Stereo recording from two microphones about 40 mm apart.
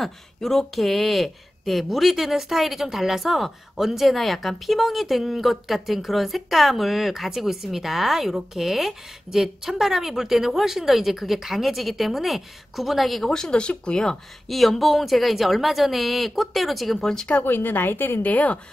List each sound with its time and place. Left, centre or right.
0.0 s a woman's voice: centre
13.3 s speech: centre
14.0 s speech: centre
17.0 s speech: centre
17.4 s a woman's voice: left
18.2 s speech: left